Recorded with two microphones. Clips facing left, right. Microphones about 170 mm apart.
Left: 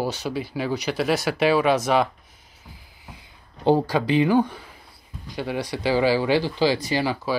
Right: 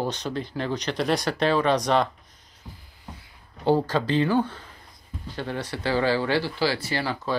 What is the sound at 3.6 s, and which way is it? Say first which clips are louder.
Speech: left 2 dB; 15° left (ahead or behind).